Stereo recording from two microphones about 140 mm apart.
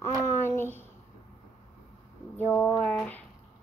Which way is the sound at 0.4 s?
15° left (ahead or behind).